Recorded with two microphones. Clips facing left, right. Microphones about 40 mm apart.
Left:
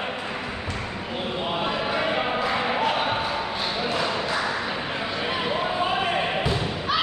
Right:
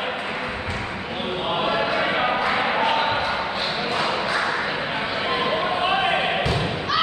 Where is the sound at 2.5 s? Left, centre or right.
Right.